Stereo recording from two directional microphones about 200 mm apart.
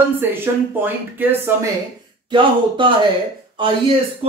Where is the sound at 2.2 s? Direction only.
25° right (ahead or behind).